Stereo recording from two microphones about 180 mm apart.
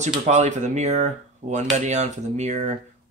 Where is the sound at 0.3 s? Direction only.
40° right (ahead or behind).